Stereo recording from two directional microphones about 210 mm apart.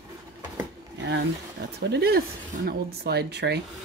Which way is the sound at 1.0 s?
55° right (ahead or behind).